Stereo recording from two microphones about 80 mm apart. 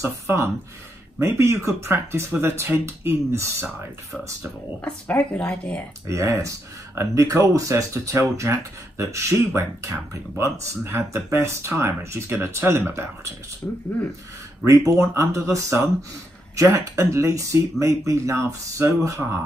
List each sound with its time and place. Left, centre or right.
0.0 s speech: right
4.8 s speech: left
6.0 s speech: right
13.6 s speech: left
14.6 s speech: right